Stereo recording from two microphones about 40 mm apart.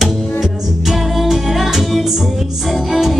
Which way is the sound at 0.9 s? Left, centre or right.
Centre.